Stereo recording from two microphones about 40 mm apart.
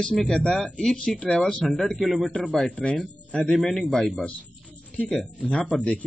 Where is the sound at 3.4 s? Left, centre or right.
Centre.